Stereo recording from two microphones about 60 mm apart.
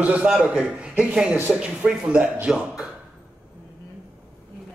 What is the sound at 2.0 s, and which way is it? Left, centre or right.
Speech, right.